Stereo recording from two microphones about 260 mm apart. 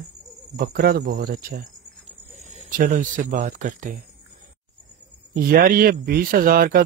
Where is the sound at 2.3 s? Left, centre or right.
Right.